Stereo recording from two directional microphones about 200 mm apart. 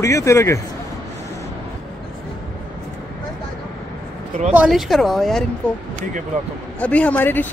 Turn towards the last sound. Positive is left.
turn(degrees=10)  # may be behind; listen again after turning